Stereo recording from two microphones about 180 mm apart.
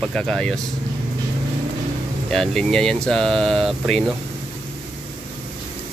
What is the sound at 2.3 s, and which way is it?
Speech, centre (ahead or behind).